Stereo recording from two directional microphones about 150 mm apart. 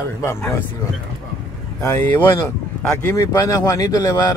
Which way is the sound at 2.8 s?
5° left (ahead or behind).